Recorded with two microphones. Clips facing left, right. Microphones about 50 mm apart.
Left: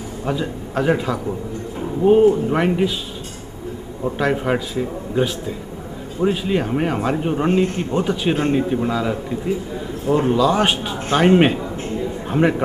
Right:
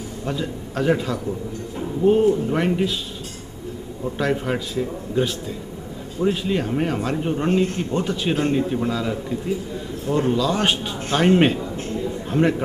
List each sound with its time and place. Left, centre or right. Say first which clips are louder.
0.2 s speech: left 4 dB; centre
4.2 s a man's voice: left 3 dB; centre